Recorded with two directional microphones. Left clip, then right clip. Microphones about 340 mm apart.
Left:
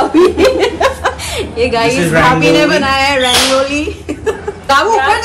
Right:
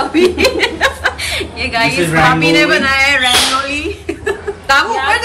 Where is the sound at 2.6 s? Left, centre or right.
Centre.